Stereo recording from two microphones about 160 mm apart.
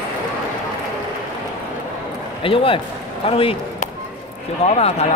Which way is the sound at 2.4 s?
35° left (ahead or behind).